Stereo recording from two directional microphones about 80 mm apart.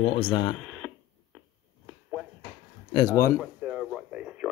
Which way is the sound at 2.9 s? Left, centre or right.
Left.